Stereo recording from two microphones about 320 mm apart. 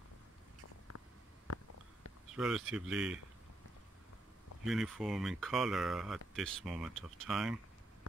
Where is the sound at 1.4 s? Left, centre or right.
Left.